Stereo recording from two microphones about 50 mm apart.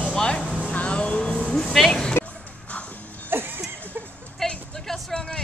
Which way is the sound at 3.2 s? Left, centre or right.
Right.